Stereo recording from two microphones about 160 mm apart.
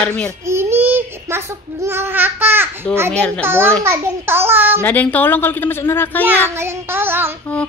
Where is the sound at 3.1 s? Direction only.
5° left (ahead or behind).